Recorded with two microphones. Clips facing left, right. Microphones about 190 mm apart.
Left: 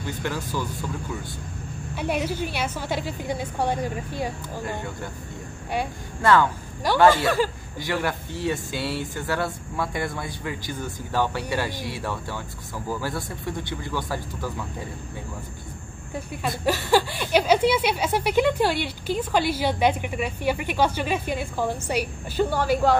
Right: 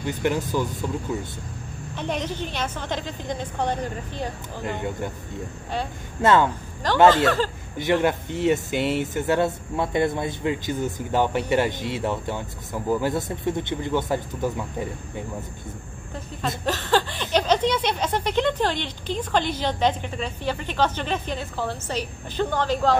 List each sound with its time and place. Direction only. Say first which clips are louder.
0.0 s speech: right 5 dB; 20° right (ahead or behind)
2.0 s speech: left 2 dB; 10° left (ahead or behind)
4.6 s speech: right 6 dB; 20° right (ahead or behind)
6.2 s speech: right 1 dB; 20° right (ahead or behind)
6.8 s speech: right 1 dB; 10° left (ahead or behind)
7.7 s speech: right 6 dB; 20° right (ahead or behind)
16.4 s speech: left 1 dB; 10° left (ahead or behind)